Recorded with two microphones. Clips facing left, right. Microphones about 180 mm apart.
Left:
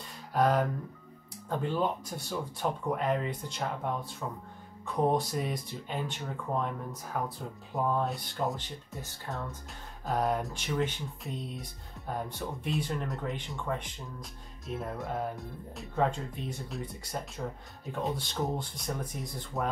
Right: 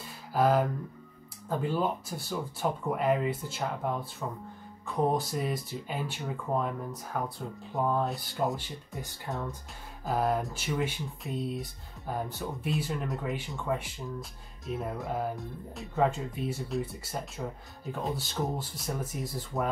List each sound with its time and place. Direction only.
0.3 s speech: 5° right (ahead or behind)
9.3 s speech: 20° right (ahead or behind)
10.0 s speech: centre (ahead or behind)